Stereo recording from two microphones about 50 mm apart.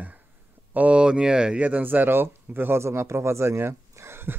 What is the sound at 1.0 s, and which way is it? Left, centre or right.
Speech, centre.